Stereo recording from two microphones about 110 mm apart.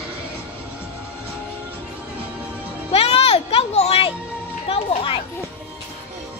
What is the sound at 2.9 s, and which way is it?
Music, 60° left (ahead or behind).